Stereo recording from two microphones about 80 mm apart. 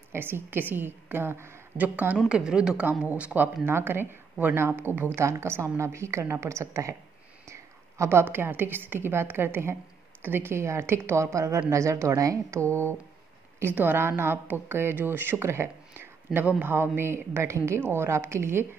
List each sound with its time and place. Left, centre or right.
0.1 s a woman's voice: right